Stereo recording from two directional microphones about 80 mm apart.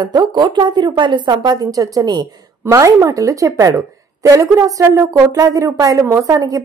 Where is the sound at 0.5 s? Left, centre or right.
Right.